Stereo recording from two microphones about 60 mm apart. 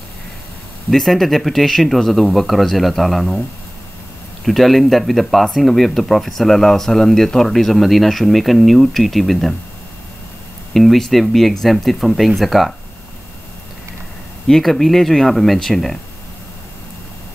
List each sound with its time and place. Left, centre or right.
0.8 s speech: centre
4.5 s speech: centre
10.7 s speech: centre
14.5 s speech: centre